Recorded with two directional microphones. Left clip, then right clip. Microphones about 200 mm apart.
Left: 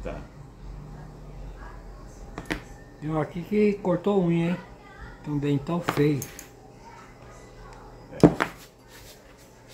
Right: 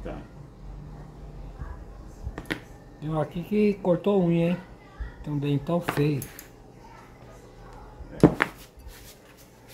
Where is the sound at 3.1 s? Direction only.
25° right (ahead or behind).